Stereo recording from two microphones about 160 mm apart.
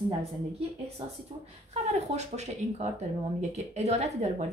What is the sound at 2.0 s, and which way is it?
Speech, 45° right (ahead or behind).